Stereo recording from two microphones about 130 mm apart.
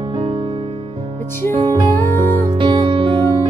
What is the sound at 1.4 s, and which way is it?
Music, 15° left (ahead or behind).